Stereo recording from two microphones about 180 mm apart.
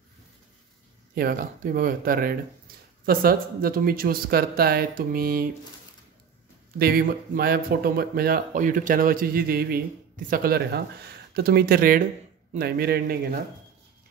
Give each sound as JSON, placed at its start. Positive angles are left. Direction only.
{"t": 1.1, "sound": "speech", "side_deg": -55}
{"t": 6.8, "sound": "speech", "side_deg": -60}